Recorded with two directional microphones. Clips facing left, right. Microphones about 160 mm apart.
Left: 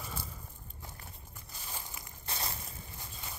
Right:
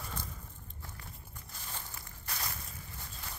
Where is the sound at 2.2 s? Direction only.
25° left (ahead or behind).